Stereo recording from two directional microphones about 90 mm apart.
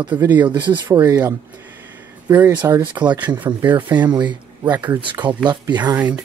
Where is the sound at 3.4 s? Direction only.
20° right (ahead or behind).